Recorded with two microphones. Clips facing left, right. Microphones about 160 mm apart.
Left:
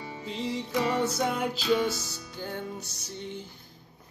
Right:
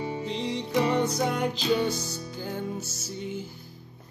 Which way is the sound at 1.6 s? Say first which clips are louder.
Left 1 dB; 30° right (ahead or behind).